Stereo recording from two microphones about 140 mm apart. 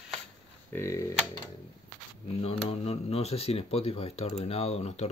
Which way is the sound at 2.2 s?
45° left (ahead or behind).